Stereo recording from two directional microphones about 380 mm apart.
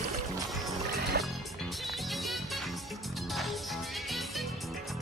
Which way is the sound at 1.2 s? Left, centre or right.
Right.